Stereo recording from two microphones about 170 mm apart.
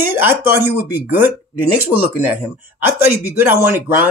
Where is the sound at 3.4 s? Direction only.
10° right (ahead or behind).